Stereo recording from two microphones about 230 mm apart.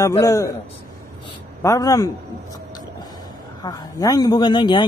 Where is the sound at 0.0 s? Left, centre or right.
Centre.